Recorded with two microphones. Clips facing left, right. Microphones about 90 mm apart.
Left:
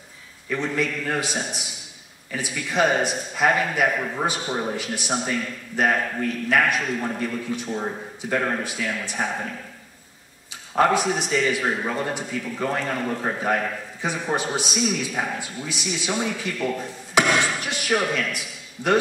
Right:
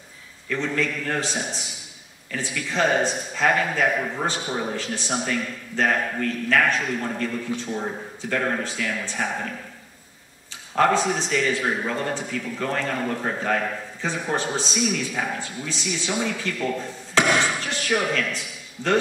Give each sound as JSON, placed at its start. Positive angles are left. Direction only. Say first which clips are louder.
{"t": 0.5, "sound": "a man's voice", "louder": "even", "side_deg": 15}
{"t": 10.7, "sound": "a man's voice", "louder": "even", "side_deg": 15}
{"t": 17.4, "sound": "a sound", "louder": "even", "side_deg": 15}